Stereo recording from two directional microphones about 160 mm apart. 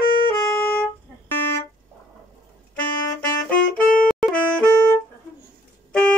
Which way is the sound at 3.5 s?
10° left (ahead or behind).